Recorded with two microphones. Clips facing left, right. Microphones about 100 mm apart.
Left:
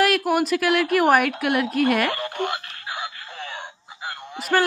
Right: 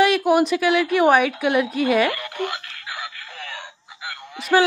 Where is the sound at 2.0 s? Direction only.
35° left (ahead or behind).